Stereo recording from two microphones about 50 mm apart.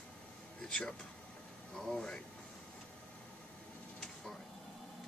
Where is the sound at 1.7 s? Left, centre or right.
Centre.